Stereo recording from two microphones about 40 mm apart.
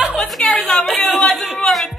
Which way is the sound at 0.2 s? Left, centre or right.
Centre.